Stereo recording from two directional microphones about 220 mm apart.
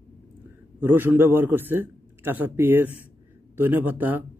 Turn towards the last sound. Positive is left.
turn(degrees=-10)  # may be behind; listen again after turning